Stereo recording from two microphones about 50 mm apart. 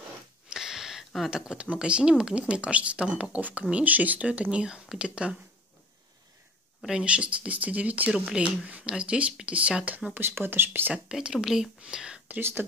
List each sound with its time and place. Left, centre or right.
0.5 s a sound: centre
1.3 s speech: centre
6.9 s speech: centre
10.1 s speech: right
11.1 s speech: centre
12.3 s speech: right